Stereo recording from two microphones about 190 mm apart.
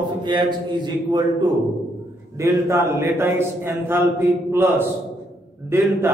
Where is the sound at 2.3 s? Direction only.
15° right (ahead or behind).